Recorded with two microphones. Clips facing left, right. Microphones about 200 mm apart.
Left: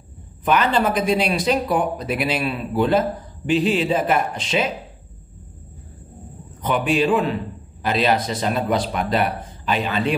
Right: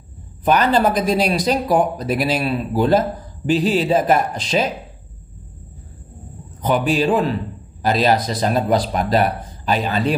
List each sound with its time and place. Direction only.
0.5 s speech: 40° right (ahead or behind)
6.6 s speech: 35° right (ahead or behind)